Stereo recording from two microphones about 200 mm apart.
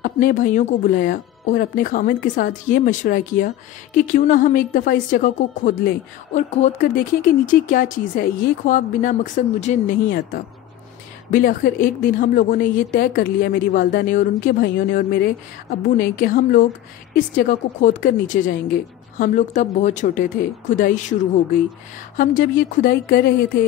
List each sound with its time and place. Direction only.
0.0 s a woman's voice: 40° left (ahead or behind)